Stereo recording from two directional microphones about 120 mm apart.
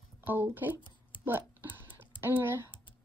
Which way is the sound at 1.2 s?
15° right (ahead or behind).